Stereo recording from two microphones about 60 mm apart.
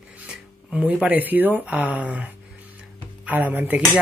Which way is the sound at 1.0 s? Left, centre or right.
Right.